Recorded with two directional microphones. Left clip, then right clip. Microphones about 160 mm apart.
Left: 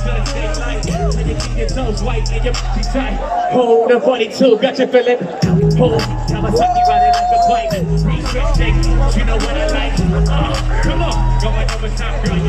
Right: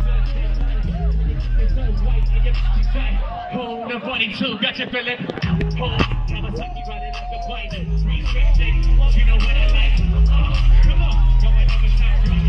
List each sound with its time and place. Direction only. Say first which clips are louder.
3.0 s a man's voice: left 12 dB; 50° left (ahead or behind)